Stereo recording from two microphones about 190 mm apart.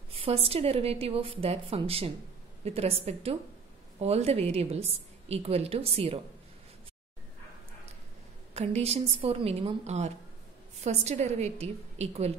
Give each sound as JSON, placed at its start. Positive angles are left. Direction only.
{"t": 0.1, "sound": "a woman's voice", "side_deg": -30}
{"t": 8.5, "sound": "a woman's voice", "side_deg": -35}